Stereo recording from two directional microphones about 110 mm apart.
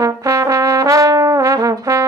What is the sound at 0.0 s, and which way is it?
Brass instrument, 30° right (ahead or behind).